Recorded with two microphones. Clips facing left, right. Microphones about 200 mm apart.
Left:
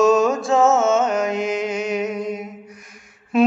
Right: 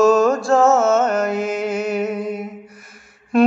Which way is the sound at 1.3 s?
5° right (ahead or behind).